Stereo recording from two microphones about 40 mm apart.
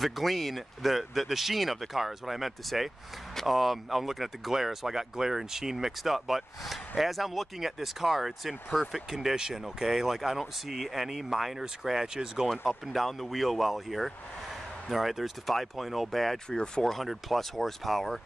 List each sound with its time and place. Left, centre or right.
0.0 s speech: centre
12.4 s speech: centre
16.4 s speech: left
16.8 s speech: centre